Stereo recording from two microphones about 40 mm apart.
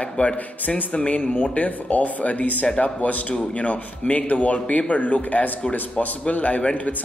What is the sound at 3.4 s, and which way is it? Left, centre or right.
A man's voice, left.